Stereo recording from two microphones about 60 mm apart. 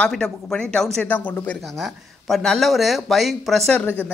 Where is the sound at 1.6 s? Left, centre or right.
Centre.